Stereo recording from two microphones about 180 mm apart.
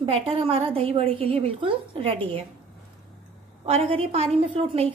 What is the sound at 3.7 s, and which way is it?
A woman's voice, 30° right (ahead or behind).